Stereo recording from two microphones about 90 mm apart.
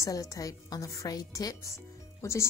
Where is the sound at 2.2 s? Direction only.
30° left (ahead or behind).